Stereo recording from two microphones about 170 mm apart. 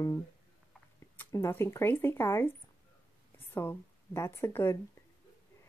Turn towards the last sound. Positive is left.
turn(degrees=15)  # may be behind; listen again after turning